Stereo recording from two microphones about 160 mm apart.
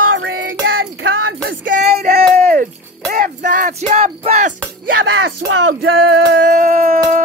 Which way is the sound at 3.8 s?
40° right (ahead or behind).